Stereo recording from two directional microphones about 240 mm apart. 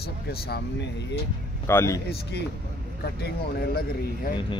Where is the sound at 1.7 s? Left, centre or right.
Centre.